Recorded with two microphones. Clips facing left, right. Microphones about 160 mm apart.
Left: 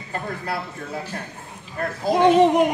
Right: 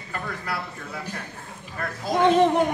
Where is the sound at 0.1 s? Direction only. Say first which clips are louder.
Left 3 dB; 30° left (ahead or behind).